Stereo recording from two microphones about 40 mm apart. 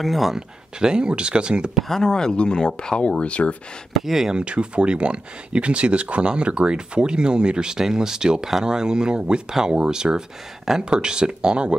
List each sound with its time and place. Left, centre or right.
0.0 s speech: centre
0.7 s speech: right
1.9 s speech: centre
3.2 s speech: left
3.9 s speech: centre
4.5 s speech: right